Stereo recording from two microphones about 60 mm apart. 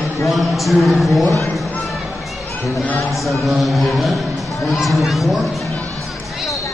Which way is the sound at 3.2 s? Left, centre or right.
Centre.